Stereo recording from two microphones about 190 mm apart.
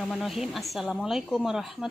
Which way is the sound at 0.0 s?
Centre (ahead or behind).